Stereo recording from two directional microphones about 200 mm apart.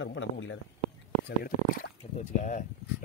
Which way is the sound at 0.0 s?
70° left (ahead or behind).